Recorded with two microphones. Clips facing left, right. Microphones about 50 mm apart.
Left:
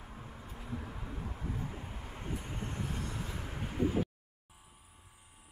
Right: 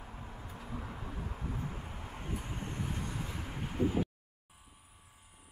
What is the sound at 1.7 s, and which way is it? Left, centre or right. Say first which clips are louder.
Vehicle: right 1 dB; centre.